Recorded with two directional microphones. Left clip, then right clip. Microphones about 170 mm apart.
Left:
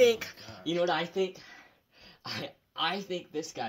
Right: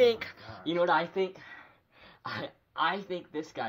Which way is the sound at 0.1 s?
45° left (ahead or behind).